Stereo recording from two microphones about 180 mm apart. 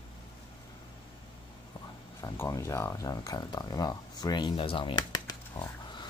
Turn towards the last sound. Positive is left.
turn(degrees=25)  # may be behind; listen again after turning